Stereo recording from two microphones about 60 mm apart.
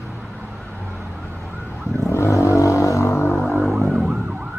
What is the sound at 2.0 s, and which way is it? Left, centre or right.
Vehicle, left.